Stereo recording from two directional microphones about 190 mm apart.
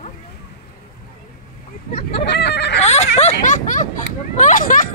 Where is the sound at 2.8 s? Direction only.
35° left (ahead or behind).